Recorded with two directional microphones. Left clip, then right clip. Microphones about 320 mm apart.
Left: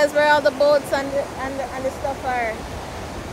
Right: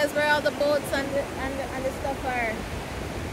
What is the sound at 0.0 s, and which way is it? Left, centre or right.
Speech, left.